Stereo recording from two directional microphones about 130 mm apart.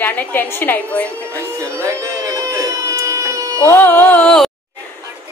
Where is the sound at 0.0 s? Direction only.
15° left (ahead or behind).